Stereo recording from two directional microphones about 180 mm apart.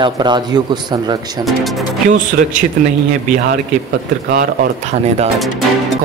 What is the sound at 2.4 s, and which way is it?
Speech, 50° right (ahead or behind).